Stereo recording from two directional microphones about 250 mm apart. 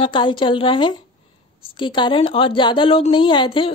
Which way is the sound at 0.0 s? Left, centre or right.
Centre.